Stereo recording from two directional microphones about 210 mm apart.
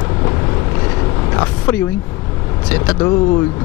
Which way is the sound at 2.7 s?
10° left (ahead or behind).